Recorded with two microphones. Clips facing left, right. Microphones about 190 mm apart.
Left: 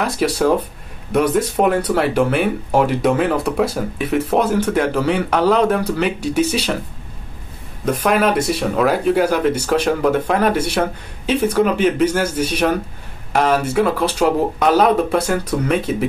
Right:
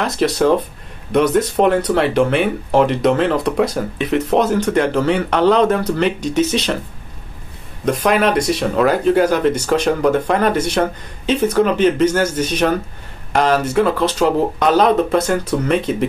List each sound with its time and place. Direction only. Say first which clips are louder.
0.0 s speech: right 1 dB; 10° left (ahead or behind)
7.8 s speech: right 1 dB; 5° left (ahead or behind)